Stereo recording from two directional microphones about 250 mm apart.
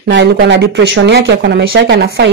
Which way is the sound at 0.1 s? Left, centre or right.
Right.